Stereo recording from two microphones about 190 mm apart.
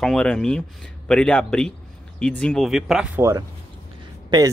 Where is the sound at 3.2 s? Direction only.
15° right (ahead or behind).